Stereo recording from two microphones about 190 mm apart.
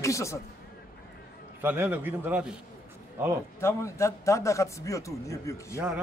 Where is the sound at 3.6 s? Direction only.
15° left (ahead or behind).